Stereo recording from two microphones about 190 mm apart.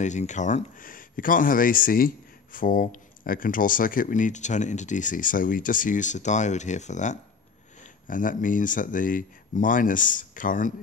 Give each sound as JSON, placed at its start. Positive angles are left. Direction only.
{"t": 0.0, "sound": "speech", "side_deg": 40}